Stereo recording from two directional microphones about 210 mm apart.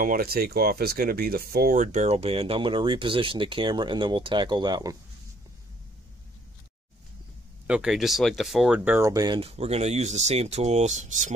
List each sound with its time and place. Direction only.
0.0 s speech: 45° right (ahead or behind); by 4.9 s 20° right (ahead or behind)
7.6 s speech: 5° right (ahead or behind); by 11.3 s 35° right (ahead or behind)